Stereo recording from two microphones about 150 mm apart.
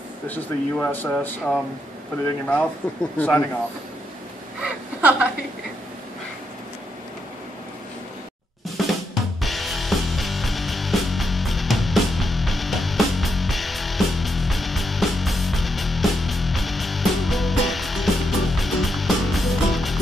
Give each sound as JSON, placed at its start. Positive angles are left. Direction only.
{"t": 0.3, "sound": "speech", "side_deg": 10}
{"t": 2.8, "sound": "speech", "side_deg": 15}
{"t": 4.6, "sound": "a sound", "side_deg": -5}
{"t": 8.8, "sound": "drum kit", "side_deg": 0}
{"t": 9.1, "sound": "music", "side_deg": 0}